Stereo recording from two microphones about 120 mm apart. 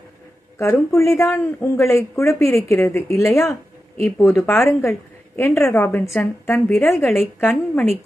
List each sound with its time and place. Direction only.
0.6 s a woman's voice: 25° left (ahead or behind)